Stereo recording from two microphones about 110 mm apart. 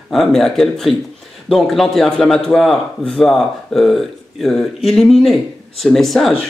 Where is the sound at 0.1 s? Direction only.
Centre (ahead or behind).